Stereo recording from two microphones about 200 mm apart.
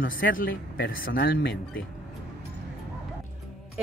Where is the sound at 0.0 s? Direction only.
45° left (ahead or behind).